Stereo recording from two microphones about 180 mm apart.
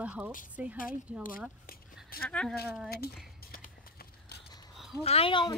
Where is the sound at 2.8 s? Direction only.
60° left (ahead or behind).